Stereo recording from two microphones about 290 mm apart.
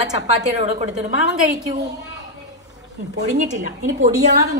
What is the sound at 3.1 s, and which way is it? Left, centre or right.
Speech, right.